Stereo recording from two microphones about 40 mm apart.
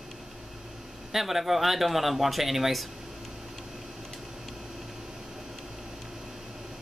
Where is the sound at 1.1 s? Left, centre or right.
Centre.